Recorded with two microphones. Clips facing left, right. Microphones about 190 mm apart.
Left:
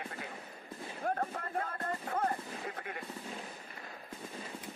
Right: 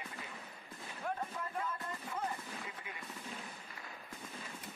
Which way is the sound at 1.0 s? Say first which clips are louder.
Left 5 dB; 50° left (ahead or behind).